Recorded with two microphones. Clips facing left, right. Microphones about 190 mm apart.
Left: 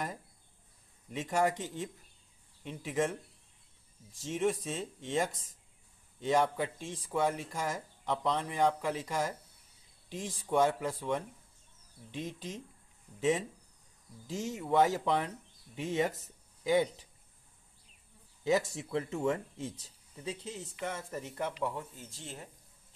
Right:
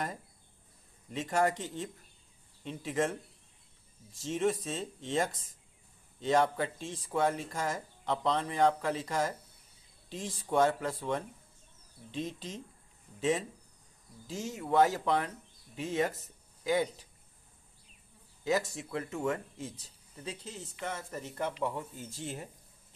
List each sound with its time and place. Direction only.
1.3 s speech: 10° left (ahead or behind)
4.2 s speech: 10° left (ahead or behind)
12.1 s speech: 10° left (ahead or behind)
14.2 s speech: 20° left (ahead or behind)
18.4 s speech: 20° left (ahead or behind)
21.5 s speech: 5° right (ahead or behind)